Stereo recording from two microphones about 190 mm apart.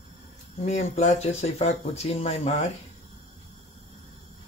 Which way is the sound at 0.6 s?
35° left (ahead or behind).